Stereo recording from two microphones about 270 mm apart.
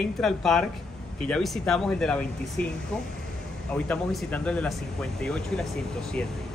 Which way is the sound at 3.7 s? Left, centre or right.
Centre.